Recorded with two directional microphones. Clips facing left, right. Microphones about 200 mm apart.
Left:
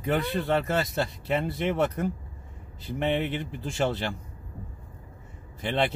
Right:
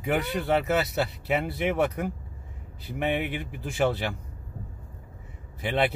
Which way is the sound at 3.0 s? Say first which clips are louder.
Left 1 dB; 10° right (ahead or behind).